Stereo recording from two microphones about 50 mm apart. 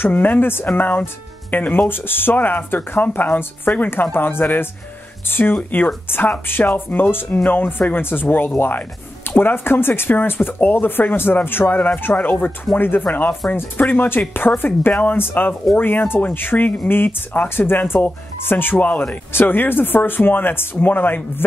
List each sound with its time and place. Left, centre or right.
0.0 s speech: left
14.5 s speech: left
18.8 s speech: left
19.3 s speech: left